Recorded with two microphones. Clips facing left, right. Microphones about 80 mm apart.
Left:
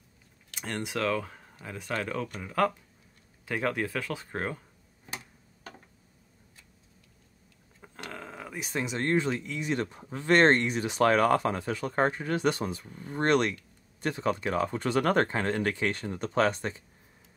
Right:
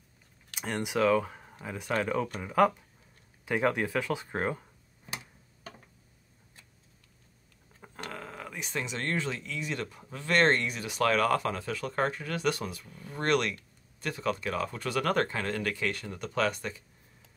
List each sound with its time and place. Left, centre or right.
0.6 s speech: centre
8.0 s speech: centre; by 16.8 s left